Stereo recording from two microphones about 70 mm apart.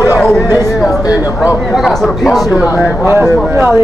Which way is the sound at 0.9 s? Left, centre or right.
Left.